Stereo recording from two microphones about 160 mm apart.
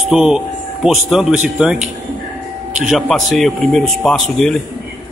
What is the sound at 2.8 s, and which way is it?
Speech, centre (ahead or behind).